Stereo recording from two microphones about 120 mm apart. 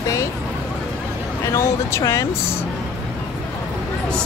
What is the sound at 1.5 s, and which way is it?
Speech, 25° left (ahead or behind).